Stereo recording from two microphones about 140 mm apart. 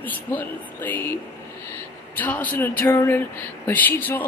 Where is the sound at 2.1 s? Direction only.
10° left (ahead or behind).